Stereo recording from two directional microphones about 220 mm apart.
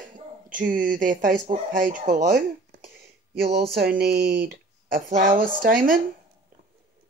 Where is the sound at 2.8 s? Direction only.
45° right (ahead or behind).